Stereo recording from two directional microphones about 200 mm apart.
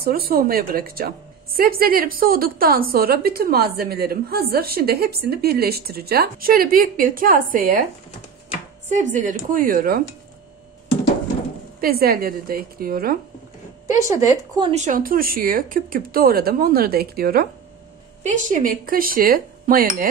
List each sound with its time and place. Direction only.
0.0 s a woman's voice: 50° right (ahead or behind)
8.8 s speech: 40° right (ahead or behind)
11.8 s a woman's voice: 50° right (ahead or behind)
13.8 s speech: 15° right (ahead or behind)
14.7 s a woman's voice: 40° right (ahead or behind)